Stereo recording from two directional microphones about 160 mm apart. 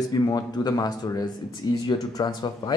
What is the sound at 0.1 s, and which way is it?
Speech, 25° left (ahead or behind).